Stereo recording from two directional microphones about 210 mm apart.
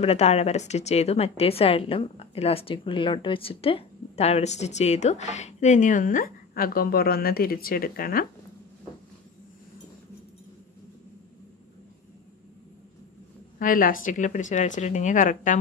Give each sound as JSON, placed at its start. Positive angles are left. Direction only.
{"t": 0.0, "sound": "a woman's voice", "side_deg": 30}
{"t": 13.6, "sound": "a woman's voice", "side_deg": 40}